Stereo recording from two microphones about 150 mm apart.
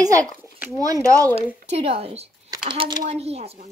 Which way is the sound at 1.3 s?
40° right (ahead or behind).